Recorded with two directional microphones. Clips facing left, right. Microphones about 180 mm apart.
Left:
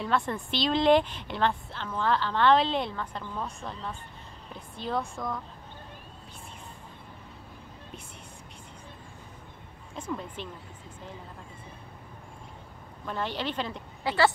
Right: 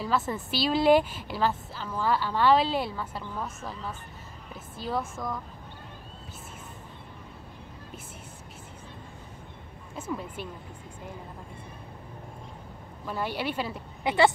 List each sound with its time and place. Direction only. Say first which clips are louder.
0.0 s a woman's voice: even; 5° right (ahead or behind)
9.9 s a woman's voice: right 1 dB; 5° right (ahead or behind)
13.0 s a woman's voice: right 1 dB; 10° right (ahead or behind)
14.0 s speech: right 2 dB; 20° right (ahead or behind)